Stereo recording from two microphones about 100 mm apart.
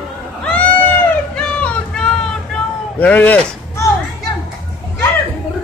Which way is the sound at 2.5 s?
15° left (ahead or behind).